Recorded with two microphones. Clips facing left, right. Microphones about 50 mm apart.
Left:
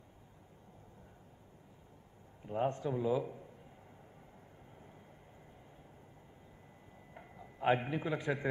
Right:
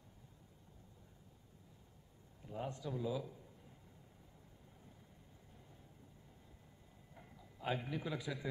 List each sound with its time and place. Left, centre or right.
2.4 s a man's voice: left
7.2 s a sound: left
8.2 s speech: left